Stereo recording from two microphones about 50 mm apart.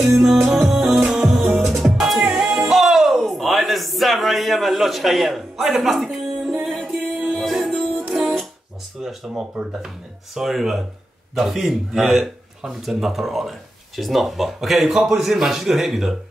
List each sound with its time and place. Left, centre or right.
0.0 s music: centre
2.3 s music: centre
2.7 s a sound: centre
6.6 s music: centre
9.0 s a sound: centre
9.3 s speech: centre
10.3 s a man's voice: centre